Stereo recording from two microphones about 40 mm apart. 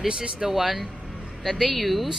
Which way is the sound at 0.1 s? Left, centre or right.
Right.